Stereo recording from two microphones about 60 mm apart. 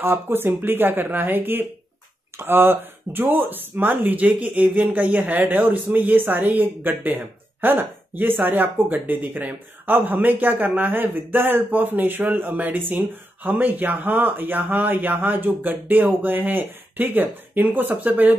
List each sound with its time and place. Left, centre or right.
0.0 s speech: right